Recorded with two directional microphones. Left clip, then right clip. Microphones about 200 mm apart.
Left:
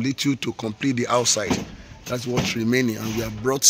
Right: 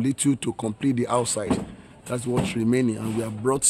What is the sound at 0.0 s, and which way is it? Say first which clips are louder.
Speech: even; 20° right (ahead or behind).